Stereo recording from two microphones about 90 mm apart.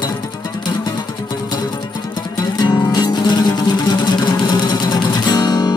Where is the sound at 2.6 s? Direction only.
55° left (ahead or behind).